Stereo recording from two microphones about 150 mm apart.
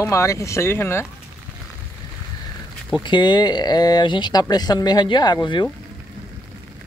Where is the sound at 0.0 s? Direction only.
20° left (ahead or behind).